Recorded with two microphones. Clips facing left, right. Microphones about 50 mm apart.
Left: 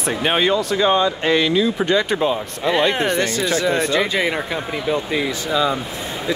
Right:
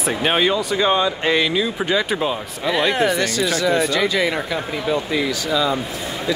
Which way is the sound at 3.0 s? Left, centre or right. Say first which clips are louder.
Right 1 dB; left.